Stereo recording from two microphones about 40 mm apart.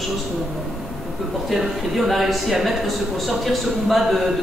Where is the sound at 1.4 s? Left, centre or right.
Centre.